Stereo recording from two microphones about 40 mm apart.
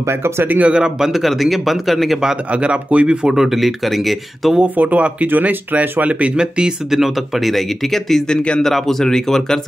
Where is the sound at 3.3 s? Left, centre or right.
Centre.